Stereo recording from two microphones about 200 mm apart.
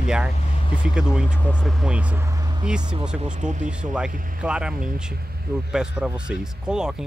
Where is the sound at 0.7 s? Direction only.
25° left (ahead or behind).